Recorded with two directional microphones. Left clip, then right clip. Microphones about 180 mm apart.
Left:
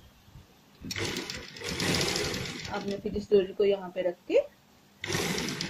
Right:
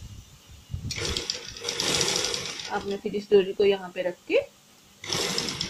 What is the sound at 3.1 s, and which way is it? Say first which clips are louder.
A woman's voice: right 4 dB; 35° right (ahead or behind).